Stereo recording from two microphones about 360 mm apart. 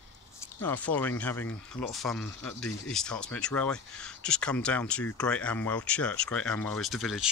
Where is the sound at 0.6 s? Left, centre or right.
Centre.